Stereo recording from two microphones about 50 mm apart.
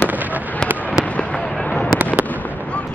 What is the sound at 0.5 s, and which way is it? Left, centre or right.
Fireworks, left.